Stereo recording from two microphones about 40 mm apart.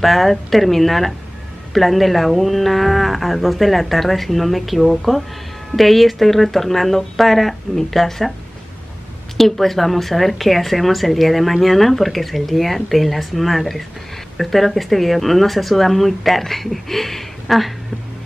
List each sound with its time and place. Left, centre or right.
0.0 s speech: centre
9.4 s speech: centre